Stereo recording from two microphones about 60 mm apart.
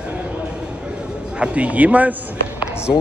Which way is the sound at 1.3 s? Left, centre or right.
Centre.